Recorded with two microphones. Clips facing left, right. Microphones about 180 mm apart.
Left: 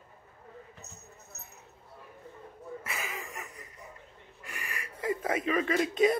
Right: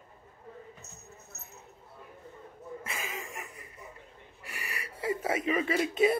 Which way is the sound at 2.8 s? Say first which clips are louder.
Right 1 dB; 25° right (ahead or behind).